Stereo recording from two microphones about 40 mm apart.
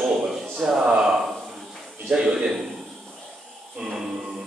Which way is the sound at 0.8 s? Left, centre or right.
Right.